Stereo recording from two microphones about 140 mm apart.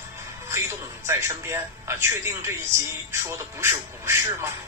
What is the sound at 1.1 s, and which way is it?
Speech, 20° right (ahead or behind).